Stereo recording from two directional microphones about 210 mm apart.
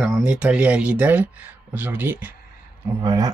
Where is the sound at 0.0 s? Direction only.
5° right (ahead or behind).